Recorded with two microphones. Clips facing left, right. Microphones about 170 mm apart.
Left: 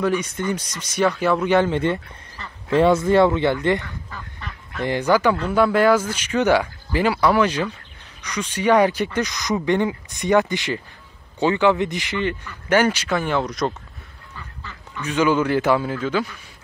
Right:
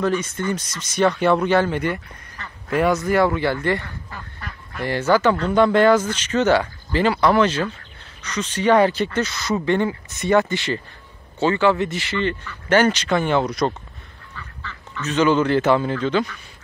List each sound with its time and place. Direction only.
0.0 s speech: 15° left (ahead or behind)
4.1 s duck: 5° right (ahead or behind)
4.8 s speech: 15° left (ahead or behind); by 13.7 s centre (ahead or behind)
14.3 s speech: 10° left (ahead or behind)